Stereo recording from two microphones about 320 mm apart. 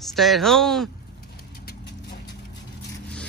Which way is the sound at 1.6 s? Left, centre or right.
Left.